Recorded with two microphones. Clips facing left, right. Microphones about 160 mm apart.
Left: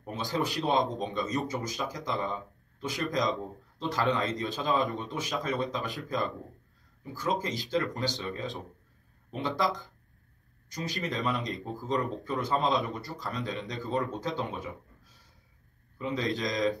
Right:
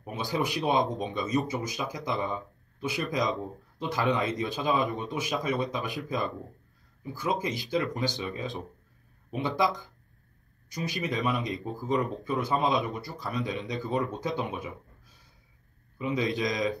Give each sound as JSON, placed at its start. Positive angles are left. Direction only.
{"t": 0.0, "sound": "speech", "side_deg": -10}
{"t": 10.7, "sound": "speech", "side_deg": -10}
{"t": 16.0, "sound": "speech", "side_deg": -15}